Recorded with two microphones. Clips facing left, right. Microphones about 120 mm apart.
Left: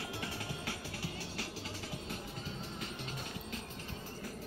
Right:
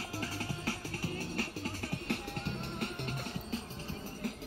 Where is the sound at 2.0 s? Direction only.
65° right (ahead or behind).